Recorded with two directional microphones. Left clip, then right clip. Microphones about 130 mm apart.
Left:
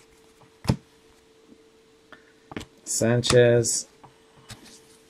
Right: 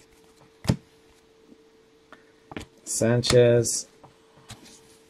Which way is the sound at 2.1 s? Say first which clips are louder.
Left 1 dB; centre (ahead or behind).